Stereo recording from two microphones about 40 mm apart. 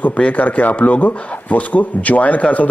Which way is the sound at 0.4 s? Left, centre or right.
Left.